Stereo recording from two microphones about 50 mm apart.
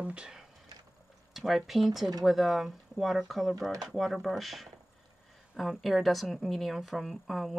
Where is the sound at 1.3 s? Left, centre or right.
Centre.